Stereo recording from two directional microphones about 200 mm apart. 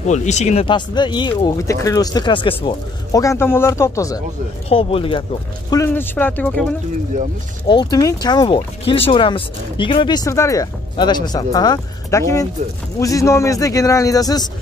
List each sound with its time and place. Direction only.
0.0 s speech: 35° left (ahead or behind); by 4.2 s 15° left (ahead or behind)
4.6 s speech: 25° left (ahead or behind)
5.7 s a man's voice: 15° left (ahead or behind)
7.6 s a man's voice: 20° left (ahead or behind)